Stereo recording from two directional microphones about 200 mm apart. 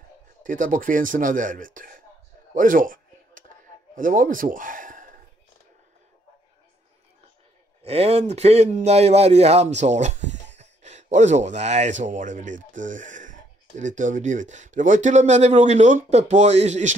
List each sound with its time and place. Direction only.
0.4 s speech: 40° right (ahead or behind)
2.5 s a sound: 40° right (ahead or behind)
7.8 s speech: 30° right (ahead or behind)